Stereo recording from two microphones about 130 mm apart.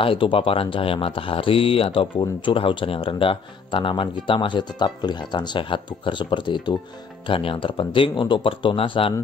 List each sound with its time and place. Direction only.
0.0 s speech: 40° left (ahead or behind)